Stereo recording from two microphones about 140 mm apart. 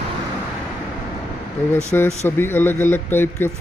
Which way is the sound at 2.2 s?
15° left (ahead or behind).